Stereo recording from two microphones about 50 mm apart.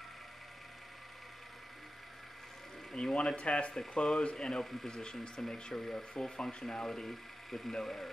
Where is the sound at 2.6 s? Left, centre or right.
Centre.